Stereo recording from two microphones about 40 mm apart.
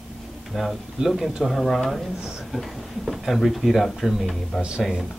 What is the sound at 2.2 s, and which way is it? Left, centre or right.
Speech, centre.